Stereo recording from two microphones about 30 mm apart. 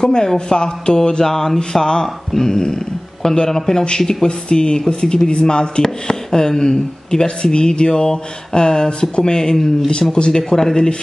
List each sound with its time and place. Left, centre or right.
0.0 s speech: left
1.2 s speech: centre; by 10.4 s left
10.5 s speech: centre